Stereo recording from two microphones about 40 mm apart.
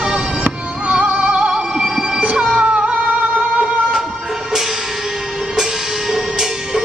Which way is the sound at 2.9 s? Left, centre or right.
Right.